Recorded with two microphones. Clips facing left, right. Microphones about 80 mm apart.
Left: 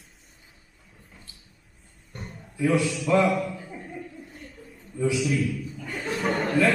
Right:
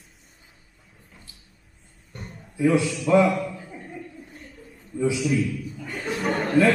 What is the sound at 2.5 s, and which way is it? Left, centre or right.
Speech, right.